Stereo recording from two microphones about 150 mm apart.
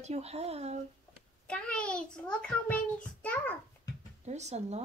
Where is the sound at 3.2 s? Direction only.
10° left (ahead or behind).